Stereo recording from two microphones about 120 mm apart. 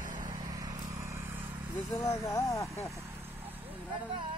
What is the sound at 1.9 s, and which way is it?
Speech, 25° left (ahead or behind).